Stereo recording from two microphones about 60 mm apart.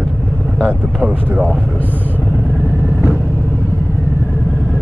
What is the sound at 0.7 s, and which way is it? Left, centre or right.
Speech, right.